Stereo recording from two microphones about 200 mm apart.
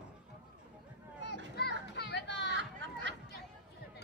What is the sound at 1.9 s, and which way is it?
Children playing, 55° left (ahead or behind).